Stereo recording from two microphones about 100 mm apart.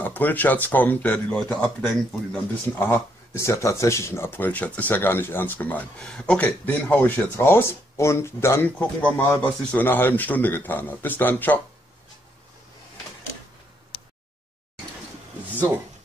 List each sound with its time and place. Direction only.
0.0 s speech: 20° left (ahead or behind)
1.3 s speech: 5° left (ahead or behind)
2.3 s speech: 20° left (ahead or behind)